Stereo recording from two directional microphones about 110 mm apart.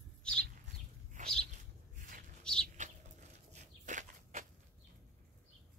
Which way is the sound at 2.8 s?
90° right.